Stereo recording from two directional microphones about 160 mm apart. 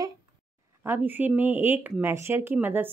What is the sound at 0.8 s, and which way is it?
Speech, 15° right (ahead or behind).